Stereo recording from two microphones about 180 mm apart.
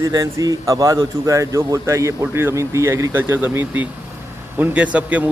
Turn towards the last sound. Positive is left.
turn(degrees=-10)  # may be behind; listen again after turning